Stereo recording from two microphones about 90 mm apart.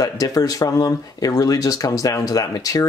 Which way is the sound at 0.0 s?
45° left (ahead or behind).